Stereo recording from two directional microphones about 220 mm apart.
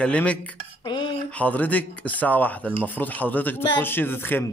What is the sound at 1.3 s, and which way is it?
A man's voice, 5° left (ahead or behind).